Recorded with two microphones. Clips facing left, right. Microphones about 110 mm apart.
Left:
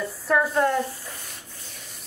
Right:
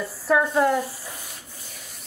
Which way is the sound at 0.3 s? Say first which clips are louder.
Right 2 dB; 5° right (ahead or behind).